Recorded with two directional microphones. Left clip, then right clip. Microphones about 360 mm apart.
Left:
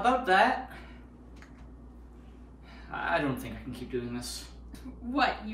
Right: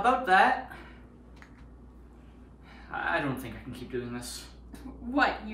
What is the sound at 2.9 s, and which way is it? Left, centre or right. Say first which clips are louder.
Speech: even; centre.